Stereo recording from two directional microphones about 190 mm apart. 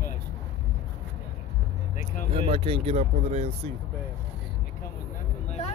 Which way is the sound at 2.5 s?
30° right (ahead or behind).